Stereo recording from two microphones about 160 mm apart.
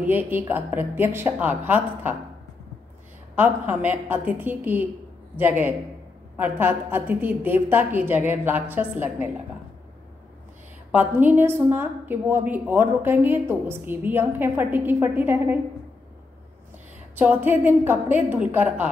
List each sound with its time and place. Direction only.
0.0 s a woman's voice: 10° right (ahead or behind)
3.3 s a woman's voice: 10° right (ahead or behind)
6.3 s a woman's voice: 10° right (ahead or behind)
10.9 s a woman's voice: 10° right (ahead or behind)
17.1 s a woman's voice: 10° right (ahead or behind)